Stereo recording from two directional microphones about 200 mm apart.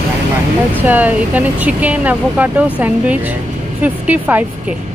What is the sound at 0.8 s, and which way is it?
Speech, 10° right (ahead or behind).